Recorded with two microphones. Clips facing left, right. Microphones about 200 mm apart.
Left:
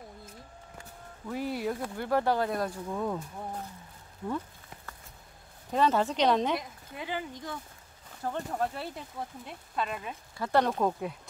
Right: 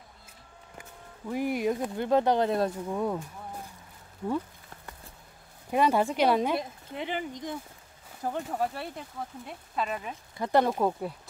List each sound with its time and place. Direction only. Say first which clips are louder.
0.7 s speech: right 2 dB; 15° right (ahead or behind)
2.9 s a woman's voice: right 3 dB; 10° right (ahead or behind)
5.7 s a woman's voice: right 2 dB; 10° right (ahead or behind)
6.5 s a woman's voice: right 3 dB; 25° right (ahead or behind); by 10.1 s centre (ahead or behind)
10.3 s a woman's voice: right 2 dB; 15° right (ahead or behind)